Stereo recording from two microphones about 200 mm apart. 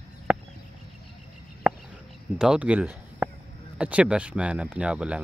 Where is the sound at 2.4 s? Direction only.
5° right (ahead or behind).